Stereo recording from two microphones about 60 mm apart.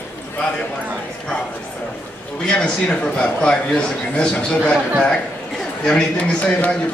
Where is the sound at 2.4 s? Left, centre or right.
Centre.